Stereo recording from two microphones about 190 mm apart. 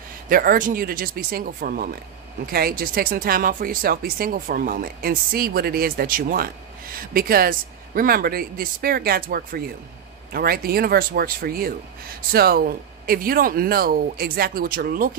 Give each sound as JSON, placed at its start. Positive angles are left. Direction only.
{"t": 0.3, "sound": "speech", "side_deg": -50}